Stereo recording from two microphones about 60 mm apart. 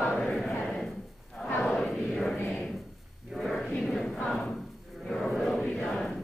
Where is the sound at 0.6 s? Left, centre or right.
Centre.